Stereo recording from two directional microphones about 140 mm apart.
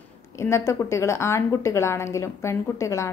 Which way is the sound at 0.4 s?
20° left (ahead or behind).